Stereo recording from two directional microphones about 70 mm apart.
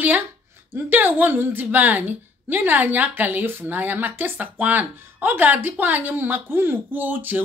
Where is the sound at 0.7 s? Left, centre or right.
Right.